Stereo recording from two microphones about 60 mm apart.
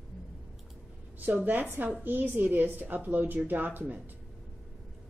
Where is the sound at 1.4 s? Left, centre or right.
Right.